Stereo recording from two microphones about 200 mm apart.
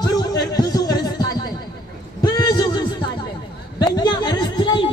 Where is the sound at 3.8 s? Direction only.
20° left (ahead or behind).